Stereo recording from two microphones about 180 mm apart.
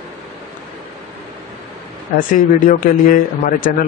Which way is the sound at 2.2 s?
50° left (ahead or behind).